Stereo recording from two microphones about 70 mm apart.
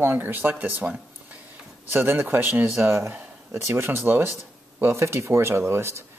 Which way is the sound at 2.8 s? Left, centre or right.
Right.